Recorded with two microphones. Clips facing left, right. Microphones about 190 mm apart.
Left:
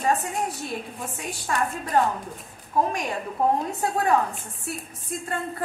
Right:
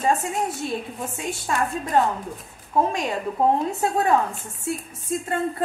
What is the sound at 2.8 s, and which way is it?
Speech, 25° right (ahead or behind).